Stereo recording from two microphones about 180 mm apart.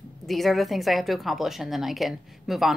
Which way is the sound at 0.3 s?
Centre (ahead or behind).